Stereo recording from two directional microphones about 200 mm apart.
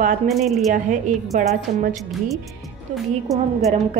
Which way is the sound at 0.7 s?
40° right (ahead or behind).